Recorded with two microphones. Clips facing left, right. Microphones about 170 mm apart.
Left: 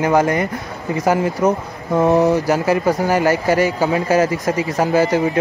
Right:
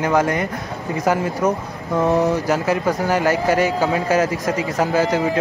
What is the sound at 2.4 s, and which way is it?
Speech, 5° left (ahead or behind).